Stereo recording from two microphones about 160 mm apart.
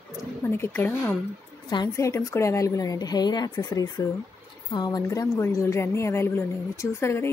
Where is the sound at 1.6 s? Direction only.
25° left (ahead or behind).